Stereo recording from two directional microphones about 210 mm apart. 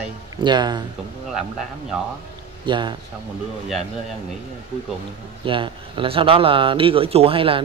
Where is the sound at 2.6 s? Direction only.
20° right (ahead or behind).